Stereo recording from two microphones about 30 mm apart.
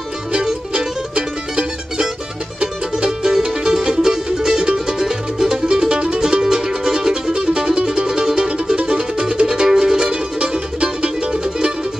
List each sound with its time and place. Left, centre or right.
0.3 s music: right
3.1 s music: centre; by 11.1 s right